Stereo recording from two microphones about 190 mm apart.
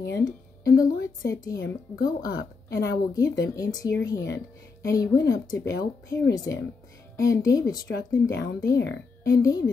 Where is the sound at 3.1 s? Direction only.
20° left (ahead or behind).